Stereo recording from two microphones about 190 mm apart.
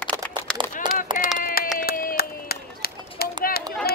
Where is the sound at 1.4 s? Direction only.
50° left (ahead or behind).